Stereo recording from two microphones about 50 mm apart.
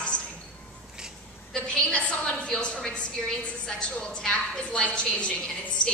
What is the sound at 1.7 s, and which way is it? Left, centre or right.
A woman's voice, left.